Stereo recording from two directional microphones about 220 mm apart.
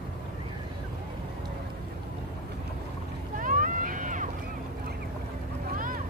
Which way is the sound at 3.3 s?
35° right (ahead or behind).